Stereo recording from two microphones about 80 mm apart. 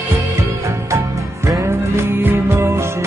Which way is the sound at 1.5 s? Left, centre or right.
Right.